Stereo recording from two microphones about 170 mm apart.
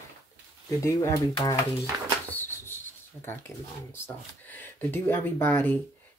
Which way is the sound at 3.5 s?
15° left (ahead or behind).